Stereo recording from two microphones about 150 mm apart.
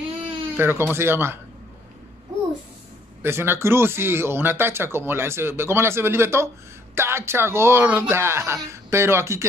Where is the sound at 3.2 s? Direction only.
15° right (ahead or behind).